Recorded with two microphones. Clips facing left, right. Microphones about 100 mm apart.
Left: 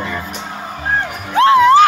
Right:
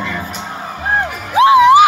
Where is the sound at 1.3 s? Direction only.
15° right (ahead or behind).